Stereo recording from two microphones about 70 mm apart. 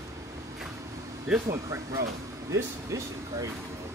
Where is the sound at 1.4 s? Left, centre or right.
Right.